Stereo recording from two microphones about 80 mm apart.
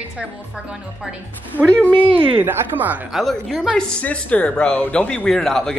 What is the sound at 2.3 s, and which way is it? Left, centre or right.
Speech, right.